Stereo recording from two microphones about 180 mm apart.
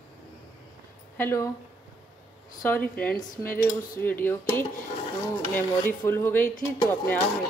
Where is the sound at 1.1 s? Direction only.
15° left (ahead or behind).